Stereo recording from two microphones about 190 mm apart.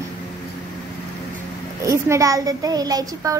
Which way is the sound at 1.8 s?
15° right (ahead or behind).